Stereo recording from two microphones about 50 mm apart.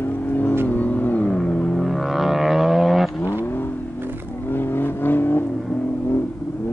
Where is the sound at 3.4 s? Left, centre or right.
Left.